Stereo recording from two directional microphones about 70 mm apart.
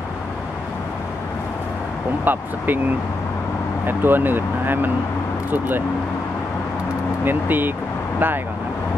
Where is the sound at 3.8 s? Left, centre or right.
Right.